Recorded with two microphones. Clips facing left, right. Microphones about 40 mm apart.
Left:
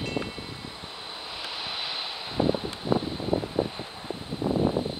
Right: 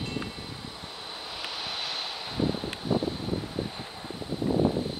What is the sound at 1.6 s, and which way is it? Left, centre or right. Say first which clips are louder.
Vehicle: left 1 dB; centre.